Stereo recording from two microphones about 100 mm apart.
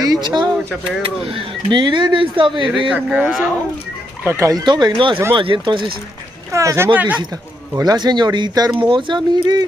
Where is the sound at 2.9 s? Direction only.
10° right (ahead or behind).